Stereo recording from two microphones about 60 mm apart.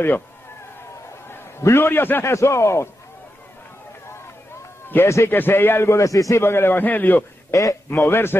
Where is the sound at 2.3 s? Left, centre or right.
Left.